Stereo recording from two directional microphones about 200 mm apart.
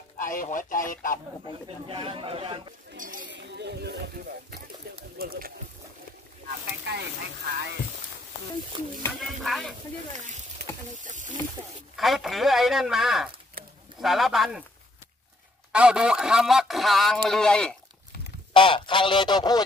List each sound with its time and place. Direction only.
0.2 s speech: 40° left (ahead or behind)
1.9 s speech: 25° right (ahead or behind)
3.2 s speech: 60° right (ahead or behind)
6.9 s speech: 55° right (ahead or behind)
9.4 s speech: centre (ahead or behind)
10.1 s speech: 35° right (ahead or behind)
12.0 s speech: centre (ahead or behind)
15.7 s speech: 5° right (ahead or behind)
18.5 s honk: 25° left (ahead or behind)